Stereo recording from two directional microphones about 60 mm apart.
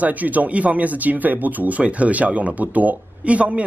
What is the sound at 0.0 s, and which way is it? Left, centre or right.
Speech, right.